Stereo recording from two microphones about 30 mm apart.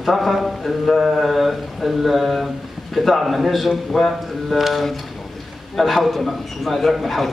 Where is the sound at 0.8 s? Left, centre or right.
Centre.